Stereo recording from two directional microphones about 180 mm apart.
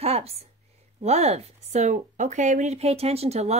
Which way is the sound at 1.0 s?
35° right (ahead or behind).